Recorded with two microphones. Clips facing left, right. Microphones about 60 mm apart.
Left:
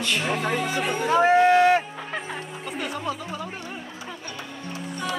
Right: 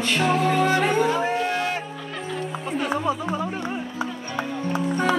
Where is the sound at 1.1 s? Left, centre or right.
Left.